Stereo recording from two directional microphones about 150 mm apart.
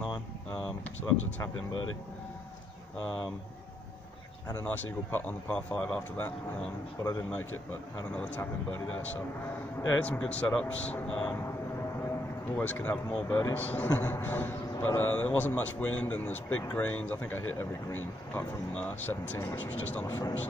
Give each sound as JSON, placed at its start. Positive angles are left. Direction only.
{"t": 4.5, "sound": "a man's voice", "side_deg": 15}
{"t": 12.5, "sound": "a man's voice", "side_deg": 10}